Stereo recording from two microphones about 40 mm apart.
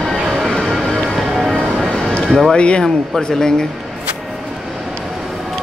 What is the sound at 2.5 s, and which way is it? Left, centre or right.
Speech, left.